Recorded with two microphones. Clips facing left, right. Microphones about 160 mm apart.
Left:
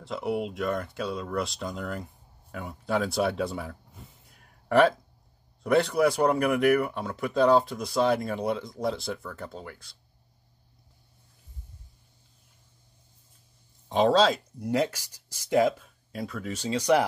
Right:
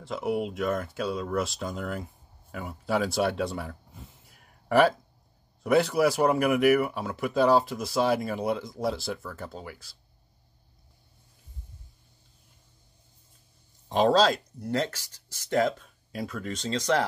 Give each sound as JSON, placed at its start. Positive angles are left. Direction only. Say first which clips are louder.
{"t": 0.0, "sound": "speech", "louder": "right 1 dB", "side_deg": 0}
{"t": 13.8, "sound": "speech", "louder": "even", "side_deg": 0}
{"t": 14.6, "sound": "speech", "louder": "left 5 dB", "side_deg": 10}
{"t": 16.1, "sound": "speech", "louder": "even", "side_deg": 0}